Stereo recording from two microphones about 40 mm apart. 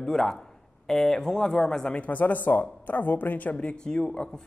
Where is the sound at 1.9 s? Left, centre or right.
Left.